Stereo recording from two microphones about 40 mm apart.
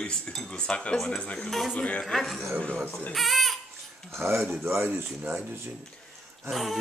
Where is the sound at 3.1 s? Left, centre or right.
Centre.